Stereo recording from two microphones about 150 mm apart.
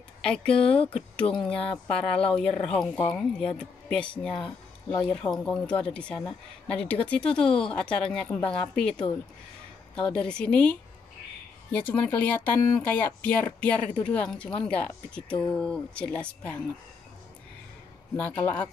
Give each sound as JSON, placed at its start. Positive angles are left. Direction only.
{"t": 0.2, "sound": "speech", "side_deg": 5}
{"t": 0.6, "sound": "speech", "side_deg": 40}
{"t": 1.3, "sound": "speech", "side_deg": 5}
{"t": 18.4, "sound": "speech", "side_deg": 15}